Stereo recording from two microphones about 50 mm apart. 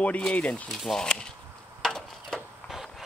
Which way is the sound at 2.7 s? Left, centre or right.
Centre.